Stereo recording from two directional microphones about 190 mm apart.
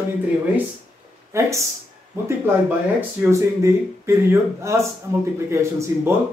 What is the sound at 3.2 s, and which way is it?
Speech, 15° right (ahead or behind).